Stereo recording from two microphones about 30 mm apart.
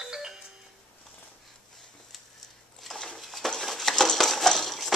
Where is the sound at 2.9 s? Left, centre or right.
Centre.